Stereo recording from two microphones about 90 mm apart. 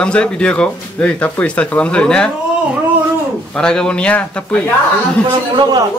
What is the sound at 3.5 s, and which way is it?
A man's voice, 10° left (ahead or behind).